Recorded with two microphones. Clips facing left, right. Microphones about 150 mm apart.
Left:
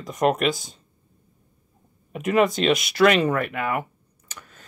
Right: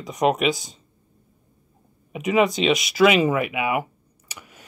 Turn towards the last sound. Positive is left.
turn(degrees=-10)  # may be behind; listen again after turning